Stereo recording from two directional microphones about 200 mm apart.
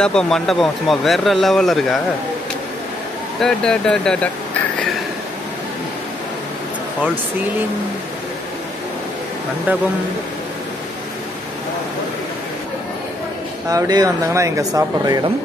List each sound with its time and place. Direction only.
0.0 s speech: 5° left (ahead or behind)
3.3 s speech: 5° left (ahead or behind)
9.7 s speech: 10° right (ahead or behind)
13.7 s speech: 20° right (ahead or behind)